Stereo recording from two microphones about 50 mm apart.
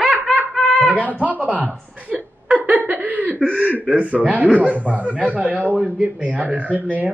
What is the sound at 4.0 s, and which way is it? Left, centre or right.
A man's voice, right.